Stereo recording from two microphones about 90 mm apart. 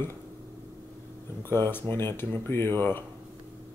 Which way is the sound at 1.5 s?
25° left (ahead or behind).